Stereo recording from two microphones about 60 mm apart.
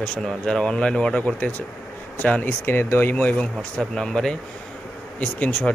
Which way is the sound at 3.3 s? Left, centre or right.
Centre.